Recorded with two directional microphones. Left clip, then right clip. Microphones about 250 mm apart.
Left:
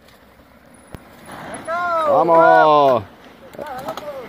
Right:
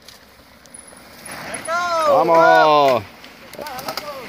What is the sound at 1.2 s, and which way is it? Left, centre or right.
Vehicle, centre.